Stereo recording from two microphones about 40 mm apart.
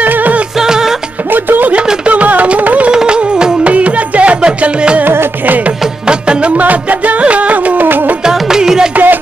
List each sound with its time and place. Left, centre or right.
0.0 s music: right
0.6 s music: centre
1.3 s music: right
2.0 s music: right
2.9 s music: right
3.6 s music: right
6.0 s music: right
6.5 s music: right
8.2 s music: centre
8.9 s music: right